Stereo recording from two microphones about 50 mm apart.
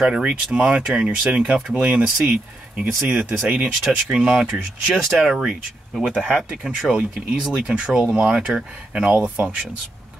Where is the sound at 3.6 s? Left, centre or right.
Centre.